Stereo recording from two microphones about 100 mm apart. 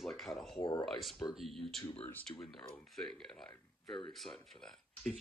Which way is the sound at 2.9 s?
5° left (ahead or behind).